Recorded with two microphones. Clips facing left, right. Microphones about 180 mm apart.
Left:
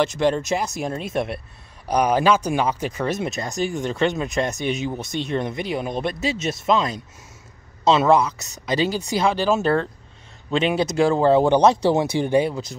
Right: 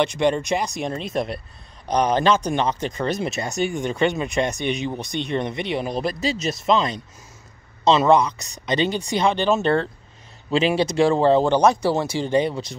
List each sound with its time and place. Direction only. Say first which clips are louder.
0.0 s speech: even; centre (ahead or behind)
11.4 s speech: left 2 dB; 15° left (ahead or behind)